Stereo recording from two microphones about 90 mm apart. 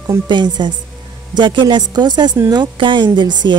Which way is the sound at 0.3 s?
60° right (ahead or behind).